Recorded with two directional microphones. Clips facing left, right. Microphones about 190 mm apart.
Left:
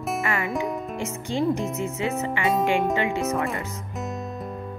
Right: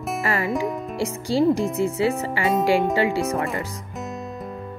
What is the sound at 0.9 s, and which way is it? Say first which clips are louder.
Speech: right 5 dB; 35° right (ahead or behind).